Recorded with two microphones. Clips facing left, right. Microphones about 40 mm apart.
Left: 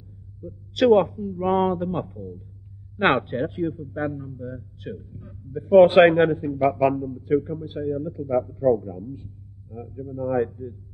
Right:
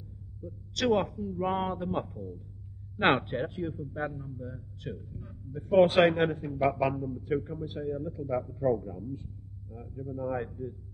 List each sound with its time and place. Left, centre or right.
0.4 s speech: centre
5.9 s a man's voice: left
6.2 s a man's voice: centre